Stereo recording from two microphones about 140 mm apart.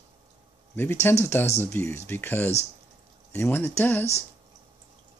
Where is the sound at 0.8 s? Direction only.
15° left (ahead or behind).